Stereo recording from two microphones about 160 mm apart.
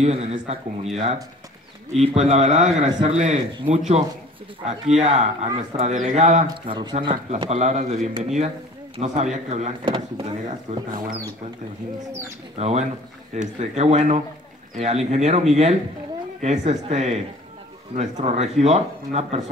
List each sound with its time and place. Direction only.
0.0 s speech: 45° right (ahead or behind)
6.7 s speech: 30° right (ahead or behind)
7.4 s speech: 45° right (ahead or behind)
9.8 s speech: 30° right (ahead or behind)
10.9 s speech: 60° right (ahead or behind)
12.5 s speech: 45° right (ahead or behind)